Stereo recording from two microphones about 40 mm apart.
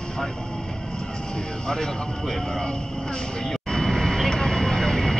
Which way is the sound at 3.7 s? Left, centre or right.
Centre.